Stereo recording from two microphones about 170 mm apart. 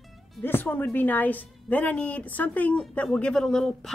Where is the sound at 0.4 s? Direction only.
10° left (ahead or behind).